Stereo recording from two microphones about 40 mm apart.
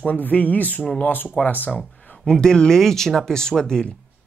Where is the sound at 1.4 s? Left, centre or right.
Left.